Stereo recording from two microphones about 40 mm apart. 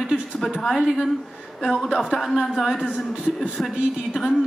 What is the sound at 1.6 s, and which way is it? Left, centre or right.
Speech, centre.